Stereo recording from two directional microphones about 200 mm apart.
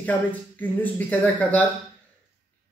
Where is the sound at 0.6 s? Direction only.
10° left (ahead or behind).